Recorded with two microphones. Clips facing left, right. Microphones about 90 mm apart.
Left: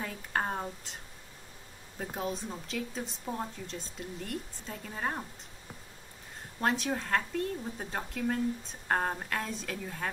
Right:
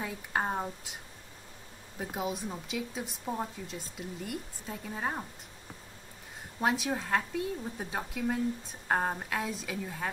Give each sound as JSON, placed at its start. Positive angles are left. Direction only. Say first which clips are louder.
{"t": 0.0, "sound": "a woman's voice", "louder": "right 1 dB", "side_deg": -10}
{"t": 2.0, "sound": "a woman's voice", "louder": "right 1 dB", "side_deg": -5}
{"t": 6.6, "sound": "a woman's voice", "louder": "right 1 dB", "side_deg": -5}